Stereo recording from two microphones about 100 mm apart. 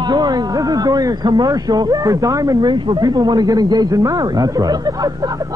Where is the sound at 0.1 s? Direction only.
45° right (ahead or behind).